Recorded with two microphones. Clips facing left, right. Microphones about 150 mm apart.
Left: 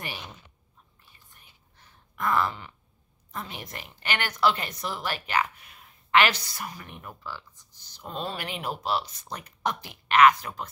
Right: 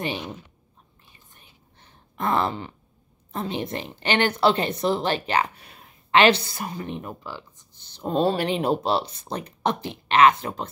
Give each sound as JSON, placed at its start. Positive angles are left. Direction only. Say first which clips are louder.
{"t": 1.0, "sound": "whispering", "louder": "right 4 dB", "side_deg": -25}
{"t": 3.3, "sound": "a woman's voice", "louder": "right 10 dB", "side_deg": -25}